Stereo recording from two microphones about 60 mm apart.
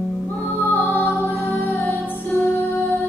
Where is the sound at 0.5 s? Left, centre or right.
Left.